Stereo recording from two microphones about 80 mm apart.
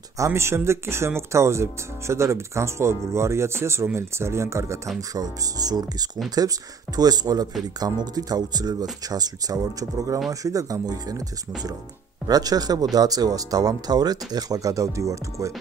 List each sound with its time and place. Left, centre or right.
0.2 s speech: right
5.1 s speech: right
12.3 s speech: right